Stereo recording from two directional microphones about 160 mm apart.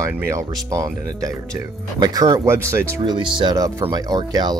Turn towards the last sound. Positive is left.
turn(degrees=-25)  # may be behind; listen again after turning